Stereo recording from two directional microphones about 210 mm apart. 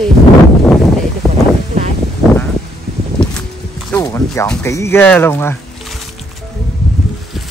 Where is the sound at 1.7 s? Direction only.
30° right (ahead or behind).